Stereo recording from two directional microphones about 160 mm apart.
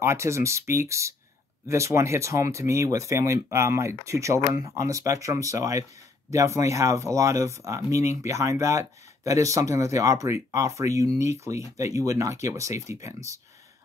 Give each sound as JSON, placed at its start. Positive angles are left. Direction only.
{"t": 0.0, "sound": "speech", "side_deg": -15}